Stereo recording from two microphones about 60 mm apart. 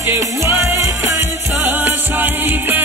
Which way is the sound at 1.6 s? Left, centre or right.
Right.